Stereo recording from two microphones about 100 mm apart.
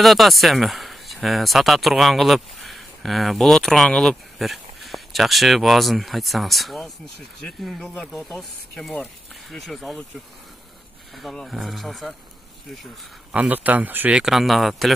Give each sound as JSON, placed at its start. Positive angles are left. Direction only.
{"t": 0.0, "sound": "speech", "side_deg": 0}
{"t": 11.1, "sound": "speech", "side_deg": 0}
{"t": 13.3, "sound": "a man's voice", "side_deg": -15}
{"t": 14.2, "sound": "speech", "side_deg": 0}